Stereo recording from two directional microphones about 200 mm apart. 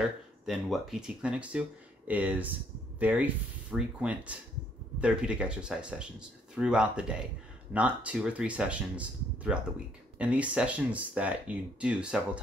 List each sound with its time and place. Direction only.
0.0 s speech: centre (ahead or behind)